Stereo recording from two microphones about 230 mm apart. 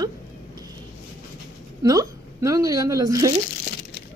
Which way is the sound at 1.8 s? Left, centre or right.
Centre.